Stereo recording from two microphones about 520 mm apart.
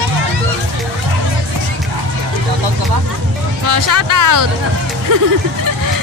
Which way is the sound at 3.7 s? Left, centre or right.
Right.